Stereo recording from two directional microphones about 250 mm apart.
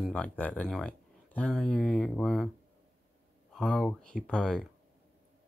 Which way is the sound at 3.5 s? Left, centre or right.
Centre.